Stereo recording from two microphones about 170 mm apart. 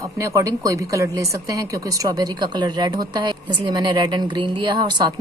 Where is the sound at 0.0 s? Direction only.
20° right (ahead or behind).